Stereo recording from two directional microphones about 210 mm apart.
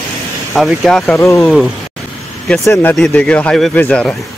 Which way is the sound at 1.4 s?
Centre (ahead or behind).